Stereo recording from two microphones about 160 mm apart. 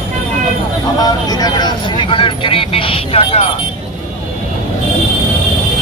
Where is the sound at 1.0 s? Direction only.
25° left (ahead or behind).